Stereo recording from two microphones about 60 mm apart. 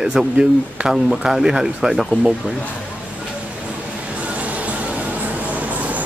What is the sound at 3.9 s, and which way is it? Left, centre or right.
Music, right.